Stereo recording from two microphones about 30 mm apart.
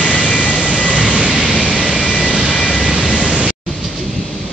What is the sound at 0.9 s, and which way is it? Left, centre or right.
Vehicle, right.